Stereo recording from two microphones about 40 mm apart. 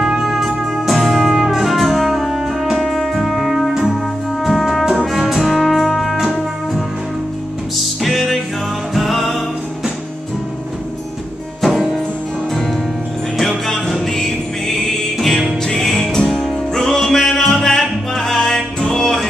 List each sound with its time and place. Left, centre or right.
0.0 s music: centre
0.3 s music: centre
7.7 s music: centre
13.4 s music: centre